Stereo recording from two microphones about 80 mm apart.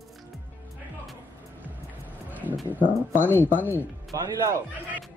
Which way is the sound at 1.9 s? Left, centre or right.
Right.